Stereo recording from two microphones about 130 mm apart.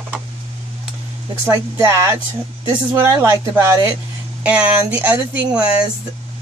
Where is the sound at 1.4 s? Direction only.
20° right (ahead or behind).